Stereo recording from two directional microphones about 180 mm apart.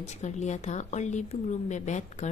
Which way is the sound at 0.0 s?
40° left (ahead or behind).